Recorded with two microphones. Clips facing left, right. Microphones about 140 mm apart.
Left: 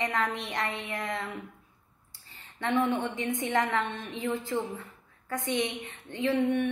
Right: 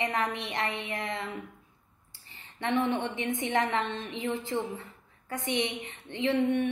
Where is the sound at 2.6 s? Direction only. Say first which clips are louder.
Left 1 dB; 20° right (ahead or behind).